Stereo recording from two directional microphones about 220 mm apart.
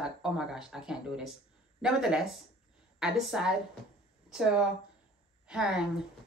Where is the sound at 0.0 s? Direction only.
5° right (ahead or behind).